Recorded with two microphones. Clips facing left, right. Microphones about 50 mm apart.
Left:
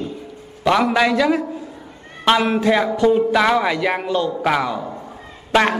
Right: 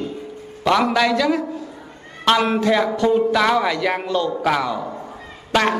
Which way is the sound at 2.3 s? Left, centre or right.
Centre.